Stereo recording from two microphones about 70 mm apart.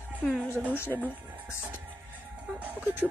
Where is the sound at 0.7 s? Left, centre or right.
Left.